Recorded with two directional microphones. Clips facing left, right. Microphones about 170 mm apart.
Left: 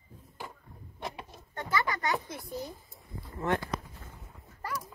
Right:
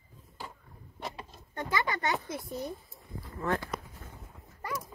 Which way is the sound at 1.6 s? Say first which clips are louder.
Even; 20° right (ahead or behind).